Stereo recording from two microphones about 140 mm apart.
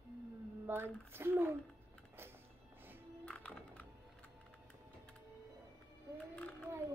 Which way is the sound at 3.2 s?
10° left (ahead or behind).